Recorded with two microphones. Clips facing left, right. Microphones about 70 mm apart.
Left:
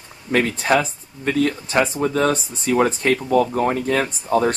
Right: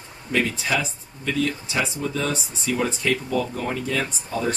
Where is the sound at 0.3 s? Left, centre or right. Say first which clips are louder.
Left 5 dB; left.